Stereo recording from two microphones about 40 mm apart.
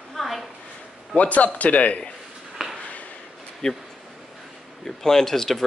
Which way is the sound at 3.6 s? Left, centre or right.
Centre.